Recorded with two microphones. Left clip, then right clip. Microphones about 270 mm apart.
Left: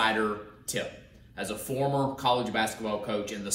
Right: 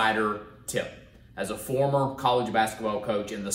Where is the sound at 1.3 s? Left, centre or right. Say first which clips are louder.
Right 4 dB; centre.